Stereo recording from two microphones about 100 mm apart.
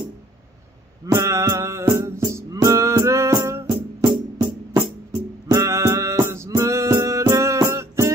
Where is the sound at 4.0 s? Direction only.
50° right (ahead or behind).